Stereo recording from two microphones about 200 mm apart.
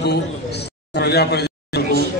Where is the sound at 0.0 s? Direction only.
55° left (ahead or behind).